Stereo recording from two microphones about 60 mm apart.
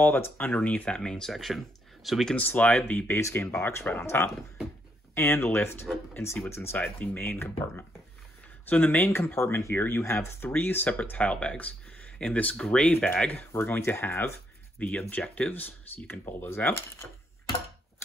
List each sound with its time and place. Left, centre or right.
0.0 s speech: left; by 1.3 s centre
1.3 s speech: centre
2.3 s speech: left
3.1 s speech: left
3.3 s speech: left
6.8 s speech: left
8.6 s speech: left
10.5 s speech: left
13.5 s speech: left
14.8 s speech: left